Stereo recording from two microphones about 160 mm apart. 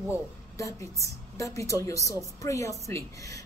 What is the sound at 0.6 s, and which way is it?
A woman's voice, 20° left (ahead or behind).